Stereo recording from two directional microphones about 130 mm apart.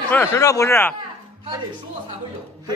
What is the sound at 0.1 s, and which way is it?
Speech, 20° left (ahead or behind).